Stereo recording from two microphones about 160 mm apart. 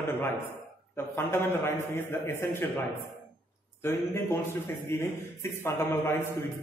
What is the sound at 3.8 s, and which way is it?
A man's voice, 15° left (ahead or behind).